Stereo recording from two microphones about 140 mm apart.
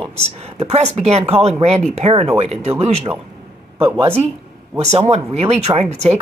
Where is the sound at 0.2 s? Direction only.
50° right (ahead or behind).